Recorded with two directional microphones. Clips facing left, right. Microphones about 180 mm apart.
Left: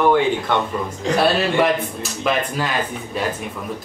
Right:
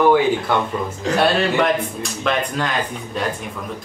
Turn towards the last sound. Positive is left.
turn(degrees=5)  # may be behind; listen again after turning